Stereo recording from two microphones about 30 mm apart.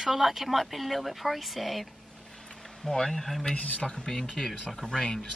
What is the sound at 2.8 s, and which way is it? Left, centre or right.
Speech, centre.